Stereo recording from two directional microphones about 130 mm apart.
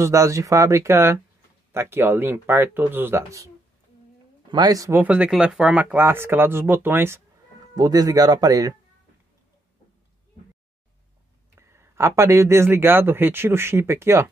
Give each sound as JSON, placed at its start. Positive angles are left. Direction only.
{"t": 0.0, "sound": "speech", "side_deg": -25}
{"t": 4.5, "sound": "speech", "side_deg": -30}
{"t": 5.0, "sound": "speech", "side_deg": -10}
{"t": 7.7, "sound": "speech", "side_deg": -30}
{"t": 11.5, "sound": "speech", "side_deg": -20}